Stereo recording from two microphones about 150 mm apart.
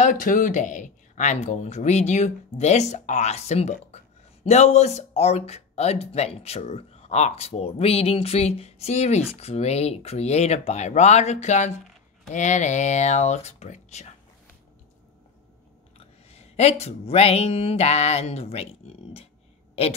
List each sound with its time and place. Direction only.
0.0 s speech: 60° left (ahead or behind)
16.0 s a sound: 45° left (ahead or behind)
16.8 s speech: 45° left (ahead or behind)